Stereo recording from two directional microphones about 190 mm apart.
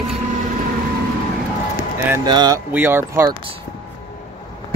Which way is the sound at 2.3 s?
20° right (ahead or behind).